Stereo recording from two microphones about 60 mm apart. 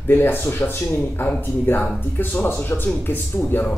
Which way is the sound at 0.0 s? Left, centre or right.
Left.